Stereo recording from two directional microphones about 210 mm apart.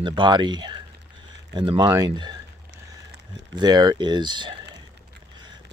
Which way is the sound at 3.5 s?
20° right (ahead or behind).